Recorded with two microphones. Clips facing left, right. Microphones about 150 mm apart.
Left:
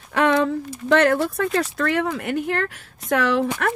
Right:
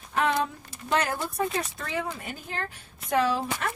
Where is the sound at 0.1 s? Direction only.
80° left.